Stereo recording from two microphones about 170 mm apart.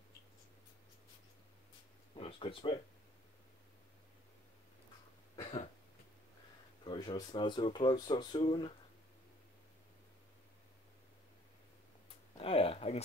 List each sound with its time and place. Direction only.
2.1 s speech: 30° left (ahead or behind)
6.8 s speech: 25° left (ahead or behind)
12.4 s a sound: 35° left (ahead or behind)